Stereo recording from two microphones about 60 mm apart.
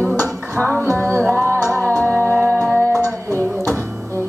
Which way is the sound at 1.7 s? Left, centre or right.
Right.